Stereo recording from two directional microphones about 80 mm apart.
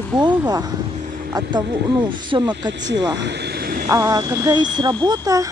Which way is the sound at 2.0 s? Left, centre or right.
Right.